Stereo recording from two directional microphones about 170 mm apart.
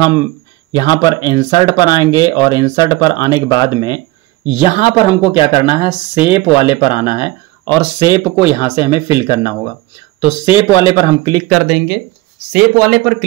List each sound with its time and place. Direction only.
0.0 s speech: 20° left (ahead or behind)
7.6 s speech: 10° left (ahead or behind)
8.0 s speech: 25° left (ahead or behind)
11.4 s speech: centre (ahead or behind)
12.7 s speech: 5° right (ahead or behind)